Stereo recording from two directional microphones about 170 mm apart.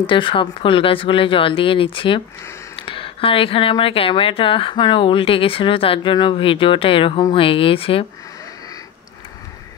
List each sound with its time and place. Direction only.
0.0 s speech: 30° left (ahead or behind)